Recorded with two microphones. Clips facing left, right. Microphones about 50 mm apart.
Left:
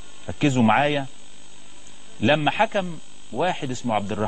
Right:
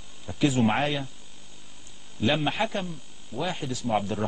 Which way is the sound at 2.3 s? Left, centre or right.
Left.